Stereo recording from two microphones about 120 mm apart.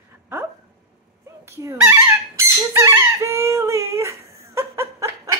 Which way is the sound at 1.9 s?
25° right (ahead or behind).